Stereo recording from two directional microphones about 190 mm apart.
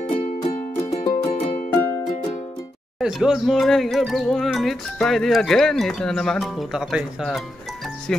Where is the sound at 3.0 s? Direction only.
5° right (ahead or behind).